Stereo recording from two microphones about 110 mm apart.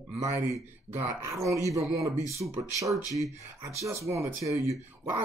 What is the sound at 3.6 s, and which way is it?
Speech, 25° right (ahead or behind).